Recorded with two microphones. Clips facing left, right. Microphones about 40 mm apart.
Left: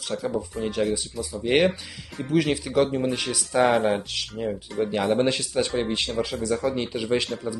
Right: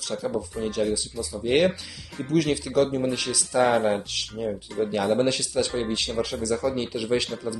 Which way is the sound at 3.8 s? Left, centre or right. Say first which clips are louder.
Even; centre.